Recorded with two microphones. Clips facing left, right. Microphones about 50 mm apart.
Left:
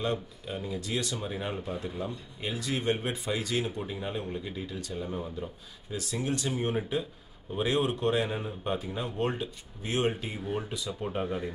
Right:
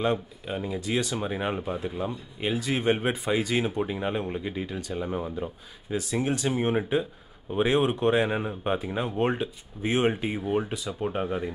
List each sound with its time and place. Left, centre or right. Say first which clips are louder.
0.0 s speech: right 5 dB; right
1.6 s speech: right 4 dB; centre